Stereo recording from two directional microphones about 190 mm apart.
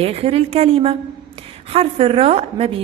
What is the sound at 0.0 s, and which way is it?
A woman's voice, 30° right (ahead or behind).